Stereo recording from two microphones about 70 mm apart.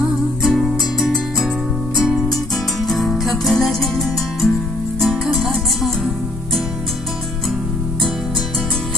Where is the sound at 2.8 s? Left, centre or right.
Centre.